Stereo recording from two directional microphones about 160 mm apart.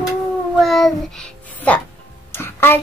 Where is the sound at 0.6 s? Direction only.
Centre (ahead or behind).